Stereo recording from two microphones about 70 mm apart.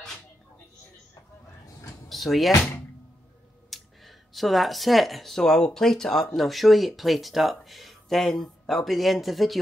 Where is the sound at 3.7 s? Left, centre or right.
Centre.